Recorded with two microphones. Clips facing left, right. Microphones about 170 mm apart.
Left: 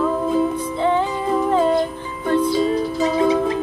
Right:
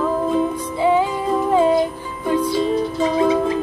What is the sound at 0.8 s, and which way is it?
Music, 10° right (ahead or behind).